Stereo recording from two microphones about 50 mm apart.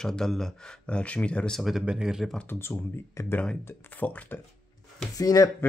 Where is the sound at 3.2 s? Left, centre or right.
Left.